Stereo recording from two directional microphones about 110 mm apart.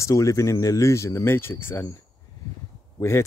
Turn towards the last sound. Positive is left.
turn(degrees=25)  # may be behind; listen again after turning